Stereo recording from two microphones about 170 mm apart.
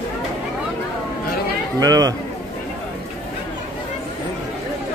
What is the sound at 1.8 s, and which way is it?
Speech, 20° right (ahead or behind).